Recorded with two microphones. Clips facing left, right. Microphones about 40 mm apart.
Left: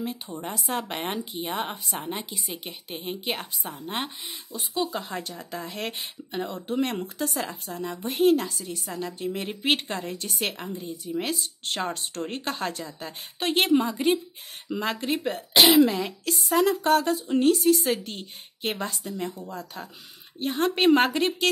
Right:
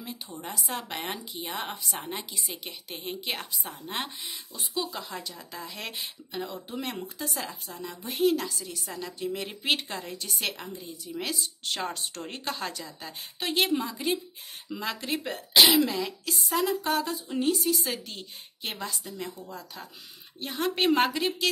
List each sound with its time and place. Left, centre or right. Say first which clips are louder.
0.0 s a woman's voice: left 6 dB; left
2.5 s a woman's voice: left 3 dB; centre
4.6 s a woman's voice: left 5 dB; left
11.3 s a woman's voice: left 2 dB; left
16.4 s a sound: left 6 dB; left
17.4 s a woman's voice: left 6 dB; left